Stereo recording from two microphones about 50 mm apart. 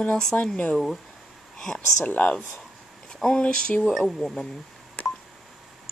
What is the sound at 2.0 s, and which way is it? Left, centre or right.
Speech, left.